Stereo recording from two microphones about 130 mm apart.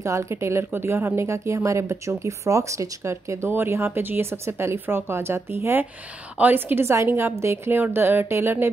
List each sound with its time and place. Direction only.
0.0 s a woman's voice: 20° right (ahead or behind)